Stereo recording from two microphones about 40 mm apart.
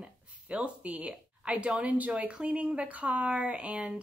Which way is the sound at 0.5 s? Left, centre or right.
Right.